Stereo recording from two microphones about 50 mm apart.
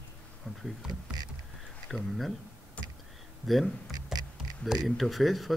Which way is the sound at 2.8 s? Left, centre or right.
Left.